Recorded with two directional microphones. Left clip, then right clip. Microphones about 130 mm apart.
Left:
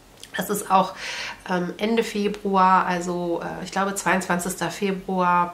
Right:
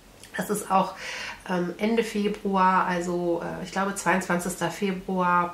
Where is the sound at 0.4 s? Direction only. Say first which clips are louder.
Left 4 dB; 25° left (ahead or behind).